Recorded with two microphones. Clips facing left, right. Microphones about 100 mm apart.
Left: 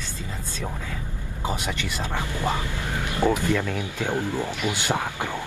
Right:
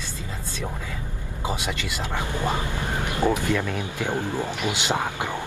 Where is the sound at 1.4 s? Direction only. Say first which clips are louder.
Even; 15° right (ahead or behind).